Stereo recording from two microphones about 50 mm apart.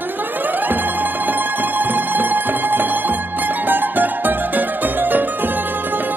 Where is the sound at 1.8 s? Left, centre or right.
Right.